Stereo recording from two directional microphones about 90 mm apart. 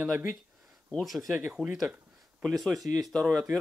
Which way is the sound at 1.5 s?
5° right (ahead or behind).